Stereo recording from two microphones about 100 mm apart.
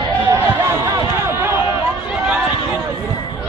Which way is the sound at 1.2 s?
25° right (ahead or behind).